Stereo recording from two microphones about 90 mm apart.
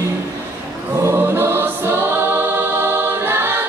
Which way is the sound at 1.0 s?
25° right (ahead or behind).